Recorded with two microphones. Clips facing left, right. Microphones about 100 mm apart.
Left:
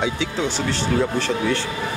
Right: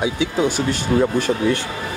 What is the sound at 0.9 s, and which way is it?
Speech, 30° right (ahead or behind).